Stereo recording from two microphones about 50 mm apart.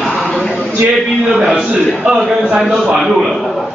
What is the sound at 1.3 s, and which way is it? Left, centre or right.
Speech, centre.